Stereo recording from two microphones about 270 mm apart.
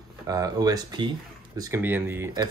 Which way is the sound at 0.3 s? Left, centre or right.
Centre.